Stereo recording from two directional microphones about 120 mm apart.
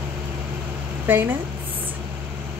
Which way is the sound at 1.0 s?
15° right (ahead or behind).